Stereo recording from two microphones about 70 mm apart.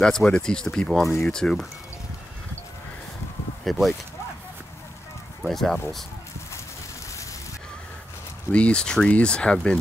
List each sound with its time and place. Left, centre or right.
0.0 s speech: centre
3.6 s speech: centre
5.4 s speech: centre
8.5 s speech: centre